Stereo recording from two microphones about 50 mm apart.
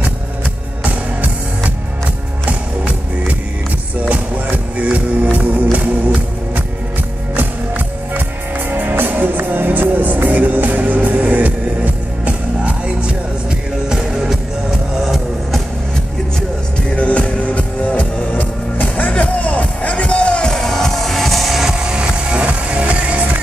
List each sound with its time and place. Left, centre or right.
0.8 s music: right
13.8 s music: centre
16.9 s music: left; by 21.9 s centre
21.9 s music: right